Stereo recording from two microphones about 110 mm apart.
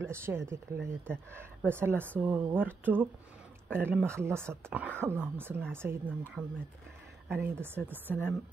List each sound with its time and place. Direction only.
0.0 s a woman's voice: 20° right (ahead or behind)
6.4 s speech: 40° right (ahead or behind)
7.2 s a woman's voice: 20° right (ahead or behind)
8.1 s speech: 15° left (ahead or behind)